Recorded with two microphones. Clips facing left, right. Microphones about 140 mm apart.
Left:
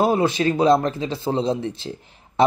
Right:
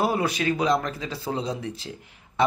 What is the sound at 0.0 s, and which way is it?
Speech, 25° left (ahead or behind).